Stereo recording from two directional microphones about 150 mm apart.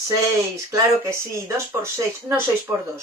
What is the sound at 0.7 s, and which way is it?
Speech, 20° right (ahead or behind).